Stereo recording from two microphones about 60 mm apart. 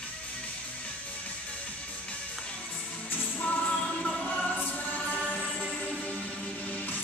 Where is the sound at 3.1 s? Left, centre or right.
Left.